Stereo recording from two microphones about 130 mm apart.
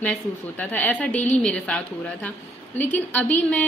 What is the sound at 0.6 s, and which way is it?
A woman's voice, 10° left (ahead or behind).